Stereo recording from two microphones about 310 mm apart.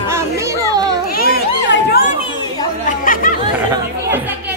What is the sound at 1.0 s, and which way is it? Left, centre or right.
Children playing, left.